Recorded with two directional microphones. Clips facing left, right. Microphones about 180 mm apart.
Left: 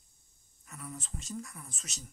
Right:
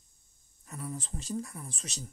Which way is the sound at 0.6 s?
30° right (ahead or behind).